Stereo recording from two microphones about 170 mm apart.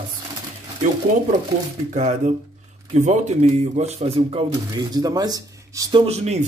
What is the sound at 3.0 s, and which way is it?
Speech, 40° right (ahead or behind).